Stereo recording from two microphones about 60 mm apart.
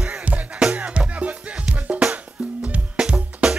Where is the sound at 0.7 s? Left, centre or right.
Right.